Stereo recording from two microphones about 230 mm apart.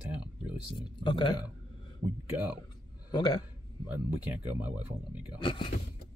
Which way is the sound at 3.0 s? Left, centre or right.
Centre.